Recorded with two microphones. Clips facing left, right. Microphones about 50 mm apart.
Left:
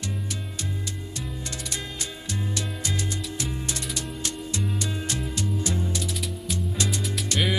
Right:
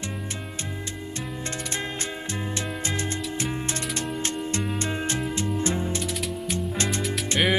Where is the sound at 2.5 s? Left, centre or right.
Right.